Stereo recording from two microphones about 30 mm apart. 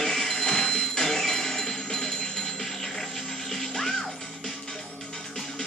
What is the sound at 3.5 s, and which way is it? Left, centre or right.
Music, centre.